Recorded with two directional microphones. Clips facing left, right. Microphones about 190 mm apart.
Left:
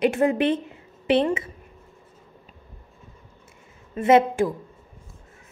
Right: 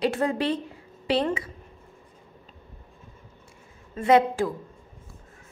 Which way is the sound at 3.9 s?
20° left (ahead or behind).